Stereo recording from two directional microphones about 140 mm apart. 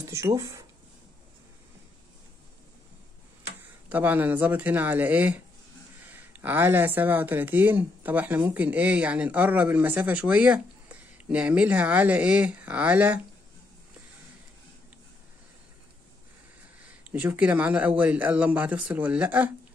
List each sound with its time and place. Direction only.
0.0 s speech: 20° right (ahead or behind)
3.9 s speech: 10° right (ahead or behind)
17.1 s speech: 10° right (ahead or behind)